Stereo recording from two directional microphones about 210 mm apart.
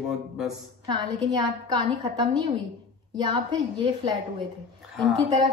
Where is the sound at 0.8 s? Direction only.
20° right (ahead or behind).